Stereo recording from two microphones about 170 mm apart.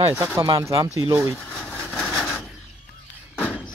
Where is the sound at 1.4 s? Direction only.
5° left (ahead or behind).